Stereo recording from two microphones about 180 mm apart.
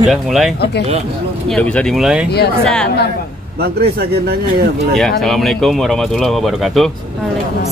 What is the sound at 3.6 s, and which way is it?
Speech, 60° right (ahead or behind).